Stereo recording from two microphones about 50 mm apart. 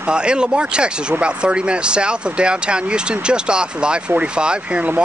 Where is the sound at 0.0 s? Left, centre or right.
Centre.